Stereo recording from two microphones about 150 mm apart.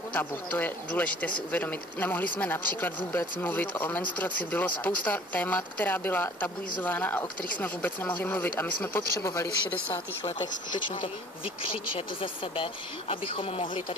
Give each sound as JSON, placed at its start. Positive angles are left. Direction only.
{"t": 0.1, "sound": "speech", "side_deg": 10}
{"t": 13.1, "sound": "speech", "side_deg": 40}